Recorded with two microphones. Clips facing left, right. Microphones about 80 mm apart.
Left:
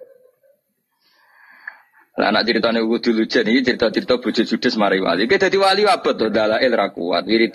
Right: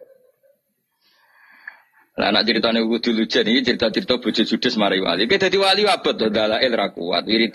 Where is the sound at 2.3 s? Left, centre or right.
Centre.